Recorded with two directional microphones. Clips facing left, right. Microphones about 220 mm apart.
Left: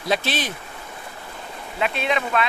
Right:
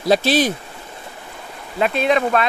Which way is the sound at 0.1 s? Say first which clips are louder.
Right 8 dB; 40° right (ahead or behind).